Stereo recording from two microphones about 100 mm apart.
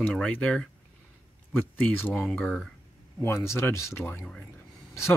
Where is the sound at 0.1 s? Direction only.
10° left (ahead or behind).